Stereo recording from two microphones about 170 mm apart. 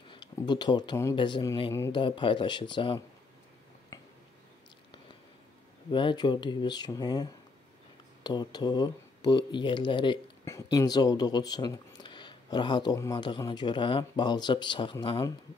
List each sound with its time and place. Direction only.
0.1 s speech: 25° left (ahead or behind)
3.9 s finger snapping: 20° left (ahead or behind)
5.9 s speech: 30° left (ahead or behind)